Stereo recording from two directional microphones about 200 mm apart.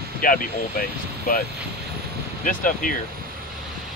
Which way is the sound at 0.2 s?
45° left (ahead or behind).